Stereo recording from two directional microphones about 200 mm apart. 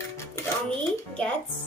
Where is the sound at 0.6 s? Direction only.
5° left (ahead or behind).